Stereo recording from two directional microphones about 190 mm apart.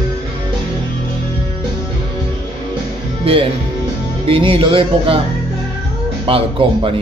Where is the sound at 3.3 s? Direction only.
30° right (ahead or behind).